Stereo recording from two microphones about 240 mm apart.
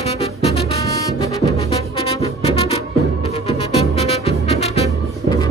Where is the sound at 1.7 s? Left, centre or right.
Left.